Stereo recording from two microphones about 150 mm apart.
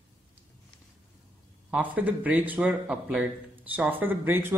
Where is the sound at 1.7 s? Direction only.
10° right (ahead or behind).